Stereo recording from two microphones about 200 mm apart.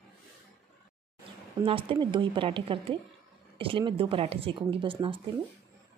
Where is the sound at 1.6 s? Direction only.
25° right (ahead or behind).